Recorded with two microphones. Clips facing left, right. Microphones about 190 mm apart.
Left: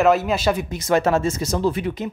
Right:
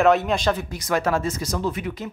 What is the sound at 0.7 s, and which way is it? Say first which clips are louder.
Speech: left 4 dB; 25° left (ahead or behind).